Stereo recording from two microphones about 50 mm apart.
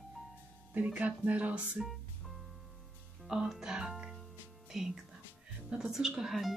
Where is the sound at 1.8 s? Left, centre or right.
Centre.